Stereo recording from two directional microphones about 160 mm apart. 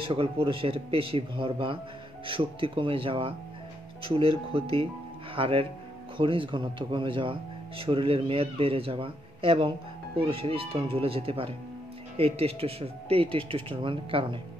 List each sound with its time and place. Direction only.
0.1 s speech: 35° right (ahead or behind)